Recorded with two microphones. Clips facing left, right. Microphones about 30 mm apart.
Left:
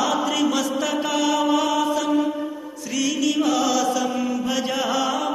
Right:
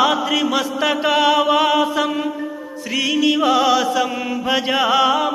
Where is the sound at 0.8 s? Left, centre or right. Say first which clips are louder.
Right 6 dB; right.